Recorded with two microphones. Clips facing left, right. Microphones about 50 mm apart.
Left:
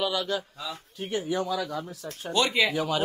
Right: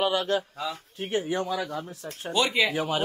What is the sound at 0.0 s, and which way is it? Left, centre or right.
A man's voice, right.